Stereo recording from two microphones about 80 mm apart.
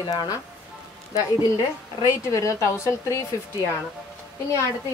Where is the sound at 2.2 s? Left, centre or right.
Left.